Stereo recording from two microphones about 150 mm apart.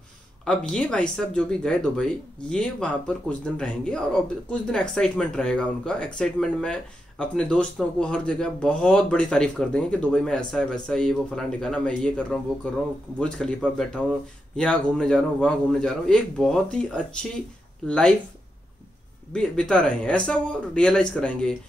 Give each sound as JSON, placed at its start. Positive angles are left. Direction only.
{"t": 0.5, "sound": "speech", "side_deg": 5}
{"t": 19.3, "sound": "speech", "side_deg": 5}